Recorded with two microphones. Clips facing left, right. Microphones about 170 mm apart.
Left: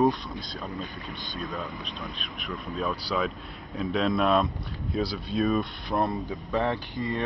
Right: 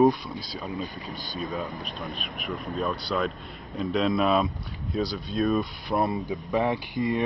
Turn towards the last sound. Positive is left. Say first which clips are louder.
# right 4 dB
turn(degrees=-15)  # may be behind; listen again after turning